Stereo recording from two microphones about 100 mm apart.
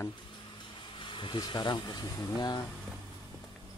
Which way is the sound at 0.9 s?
55° left (ahead or behind).